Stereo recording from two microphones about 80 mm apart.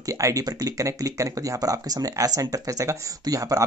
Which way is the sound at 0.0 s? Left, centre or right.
Right.